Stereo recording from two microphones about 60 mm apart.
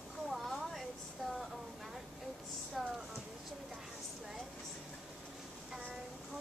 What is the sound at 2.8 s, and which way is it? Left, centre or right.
Speech, centre.